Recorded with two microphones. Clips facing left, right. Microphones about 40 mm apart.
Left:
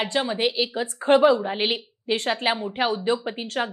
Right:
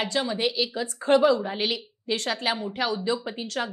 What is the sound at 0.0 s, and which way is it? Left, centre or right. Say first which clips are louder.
A woman's voice: left 2 dB; left.